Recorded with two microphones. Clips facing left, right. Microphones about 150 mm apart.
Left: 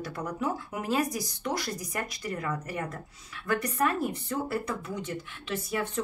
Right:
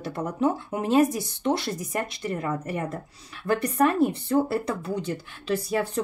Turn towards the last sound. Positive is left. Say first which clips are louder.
# right 6 dB
turn(degrees=-35)  # may be behind; listen again after turning